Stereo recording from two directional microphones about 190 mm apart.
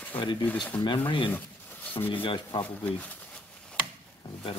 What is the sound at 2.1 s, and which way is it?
Speech, 25° left (ahead or behind).